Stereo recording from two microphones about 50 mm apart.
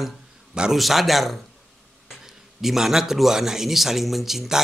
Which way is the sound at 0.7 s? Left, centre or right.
Centre.